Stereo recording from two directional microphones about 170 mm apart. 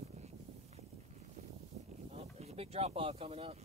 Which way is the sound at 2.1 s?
40° right (ahead or behind).